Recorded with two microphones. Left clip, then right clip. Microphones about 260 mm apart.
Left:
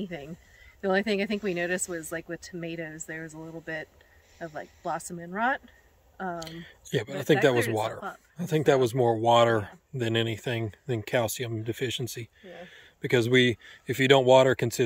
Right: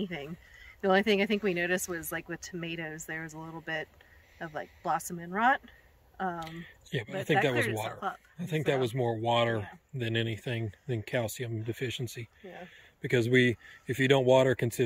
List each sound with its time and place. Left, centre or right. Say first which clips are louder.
0.0 s speech: even; centre